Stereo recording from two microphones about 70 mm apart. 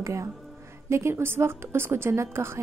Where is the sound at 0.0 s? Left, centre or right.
Right.